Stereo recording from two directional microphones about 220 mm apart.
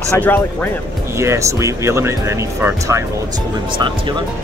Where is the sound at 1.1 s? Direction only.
15° right (ahead or behind).